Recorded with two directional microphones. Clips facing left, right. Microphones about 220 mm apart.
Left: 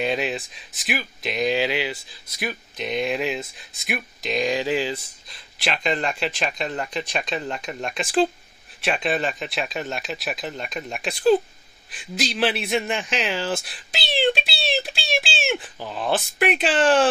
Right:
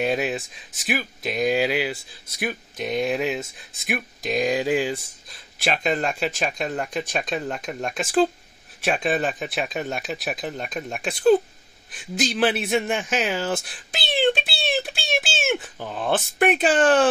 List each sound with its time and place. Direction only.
0.0 s speech: 45° right (ahead or behind)